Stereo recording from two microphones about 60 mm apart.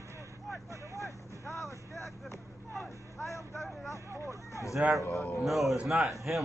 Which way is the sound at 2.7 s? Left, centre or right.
Centre.